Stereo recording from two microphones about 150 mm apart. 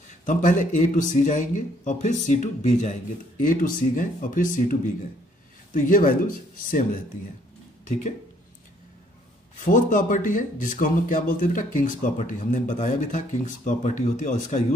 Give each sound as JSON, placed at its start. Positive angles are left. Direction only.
{"t": 0.2, "sound": "speech", "side_deg": 60}
{"t": 7.8, "sound": "speech", "side_deg": 55}
{"t": 9.6, "sound": "speech", "side_deg": 60}